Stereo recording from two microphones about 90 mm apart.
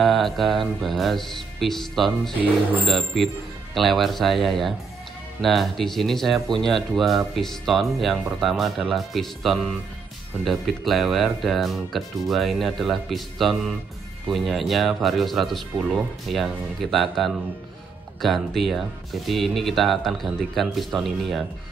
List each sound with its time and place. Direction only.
0.0 s speech: centre (ahead or behind)
3.7 s speech: centre (ahead or behind)